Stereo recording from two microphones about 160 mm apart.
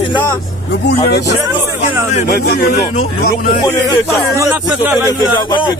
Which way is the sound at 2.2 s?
85° left.